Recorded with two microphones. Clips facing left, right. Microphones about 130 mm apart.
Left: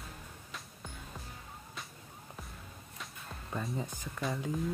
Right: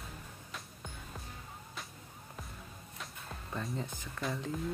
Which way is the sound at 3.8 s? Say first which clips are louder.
Left 2 dB; 10° left (ahead or behind).